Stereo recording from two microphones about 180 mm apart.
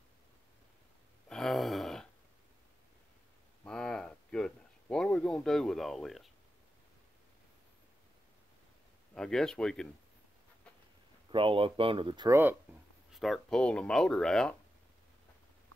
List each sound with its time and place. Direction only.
1.3 s a sound: centre (ahead or behind)
3.6 s a sound: 5° left (ahead or behind)
9.1 s speech: 5° left (ahead or behind)
11.3 s speech: 30° right (ahead or behind)
12.3 s speech: 10° right (ahead or behind)
13.1 s speech: centre (ahead or behind)